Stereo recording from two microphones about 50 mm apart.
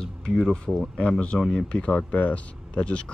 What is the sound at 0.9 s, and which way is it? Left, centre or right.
Speech, centre.